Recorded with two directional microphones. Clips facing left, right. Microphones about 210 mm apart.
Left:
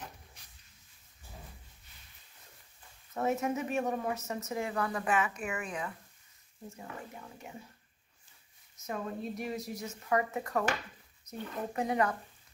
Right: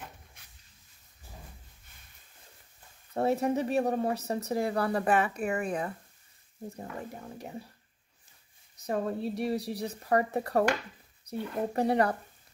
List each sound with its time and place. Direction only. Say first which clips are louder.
3.1 s a woman's voice: right 4 dB; 35° right (ahead or behind)
8.8 s a woman's voice: right 6 dB; 35° right (ahead or behind)